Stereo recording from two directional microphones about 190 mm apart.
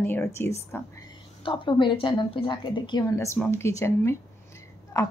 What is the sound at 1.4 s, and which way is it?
A woman's voice, 25° left (ahead or behind).